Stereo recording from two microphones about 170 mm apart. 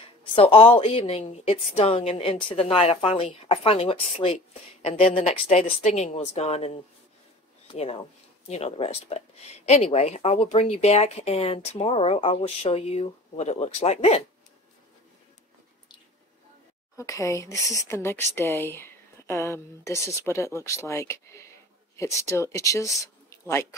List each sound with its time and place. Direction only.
0.2 s speech: 30° left (ahead or behind)
16.9 s speech: 20° left (ahead or behind)